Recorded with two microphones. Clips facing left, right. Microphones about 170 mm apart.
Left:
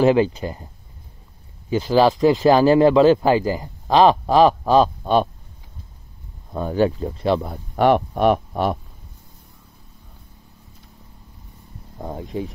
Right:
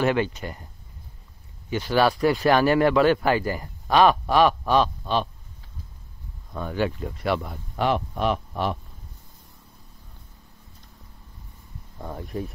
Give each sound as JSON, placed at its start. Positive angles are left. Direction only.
{"t": 0.0, "sound": "speech", "side_deg": 30}
{"t": 1.7, "sound": "speech", "side_deg": 30}
{"t": 5.0, "sound": "speech", "side_deg": 45}
{"t": 6.5, "sound": "speech", "side_deg": 35}
{"t": 7.7, "sound": "speech", "side_deg": 55}
{"t": 12.0, "sound": "speech", "side_deg": 20}